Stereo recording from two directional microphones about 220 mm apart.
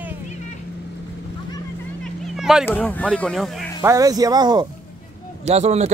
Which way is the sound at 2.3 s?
Centre (ahead or behind).